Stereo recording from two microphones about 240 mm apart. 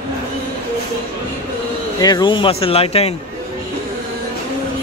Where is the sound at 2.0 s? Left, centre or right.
Centre.